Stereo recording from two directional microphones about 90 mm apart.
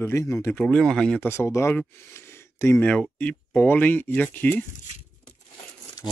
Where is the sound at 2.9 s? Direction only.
15° left (ahead or behind).